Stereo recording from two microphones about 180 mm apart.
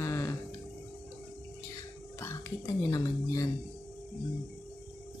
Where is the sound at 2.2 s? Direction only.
15° left (ahead or behind).